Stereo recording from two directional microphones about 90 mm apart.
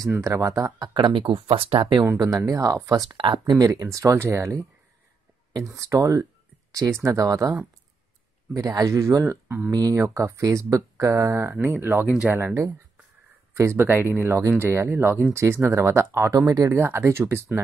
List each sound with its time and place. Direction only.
0.2 s speech: 35° right (ahead or behind); by 2.0 s 75° right (ahead or behind)
2.1 s speech: 40° right (ahead or behind)
3.2 s speech: 65° right (ahead or behind)
3.5 s speech: 45° right (ahead or behind)
8.5 s speech: 40° right (ahead or behind)
9.7 s speech: 40° right (ahead or behind)